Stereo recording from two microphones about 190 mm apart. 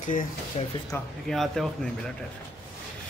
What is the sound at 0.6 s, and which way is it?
Speech, 30° left (ahead or behind).